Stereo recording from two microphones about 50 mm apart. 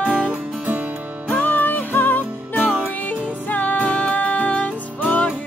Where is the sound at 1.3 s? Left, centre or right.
Left.